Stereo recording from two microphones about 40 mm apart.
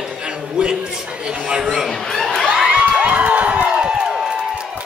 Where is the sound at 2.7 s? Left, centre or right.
Right.